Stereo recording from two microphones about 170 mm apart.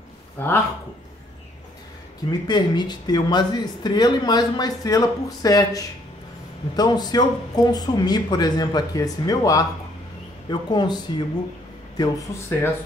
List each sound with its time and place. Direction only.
0.4 s speech: 10° left (ahead or behind)
2.4 s speech: 25° left (ahead or behind)